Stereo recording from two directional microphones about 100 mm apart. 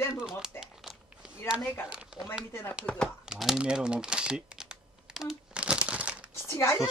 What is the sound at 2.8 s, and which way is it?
Speech, 10° left (ahead or behind).